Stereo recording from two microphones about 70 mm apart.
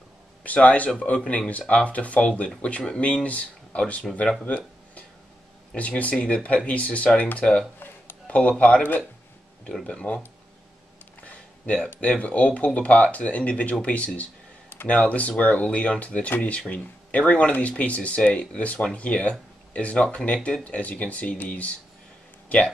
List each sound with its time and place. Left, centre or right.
0.4 s speech: centre
4.3 s a sound: centre
5.8 s speech: centre
9.7 s speech: centre
11.2 s a sound: centre
11.9 s speech: left